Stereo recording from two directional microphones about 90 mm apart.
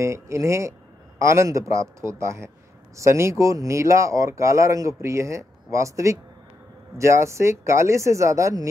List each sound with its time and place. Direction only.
0.0 s speech: 35° right (ahead or behind)